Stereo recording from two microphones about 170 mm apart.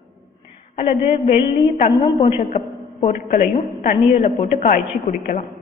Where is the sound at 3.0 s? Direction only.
50° left (ahead or behind).